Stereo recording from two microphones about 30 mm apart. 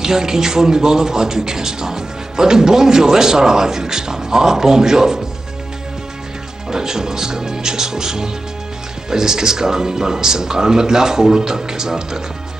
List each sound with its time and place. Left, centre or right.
0.0 s speech: centre
6.7 s speech: centre